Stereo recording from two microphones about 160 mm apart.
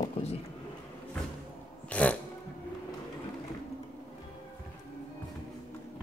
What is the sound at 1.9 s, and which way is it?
Dog, 10° left (ahead or behind).